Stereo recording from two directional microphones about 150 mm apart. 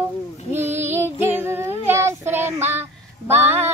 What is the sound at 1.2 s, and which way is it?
Child singing, 15° right (ahead or behind).